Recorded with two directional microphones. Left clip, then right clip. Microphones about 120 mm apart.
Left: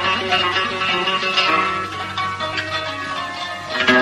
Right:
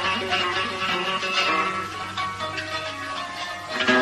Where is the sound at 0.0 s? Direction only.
35° right (ahead or behind).